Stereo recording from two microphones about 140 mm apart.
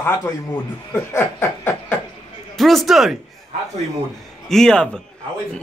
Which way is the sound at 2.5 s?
Centre (ahead or behind).